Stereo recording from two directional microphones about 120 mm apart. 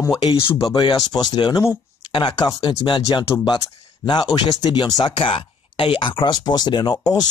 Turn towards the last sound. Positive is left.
turn(degrees=35)  # may be behind; listen again after turning